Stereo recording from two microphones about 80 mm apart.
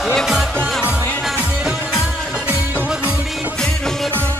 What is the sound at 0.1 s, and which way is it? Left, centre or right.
Music, centre.